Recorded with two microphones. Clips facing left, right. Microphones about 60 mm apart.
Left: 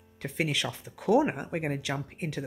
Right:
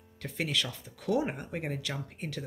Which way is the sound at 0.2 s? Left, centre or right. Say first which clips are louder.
Left 3 dB; left.